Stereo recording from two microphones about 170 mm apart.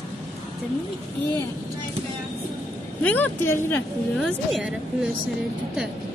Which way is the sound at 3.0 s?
10° left (ahead or behind).